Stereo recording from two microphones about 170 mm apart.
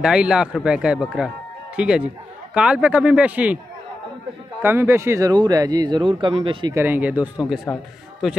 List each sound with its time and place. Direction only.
0.0 s speech: 5° right (ahead or behind)
4.6 s speech: 15° right (ahead or behind); by 6.7 s 30° right (ahead or behind)
6.7 s a man's voice: 10° right (ahead or behind)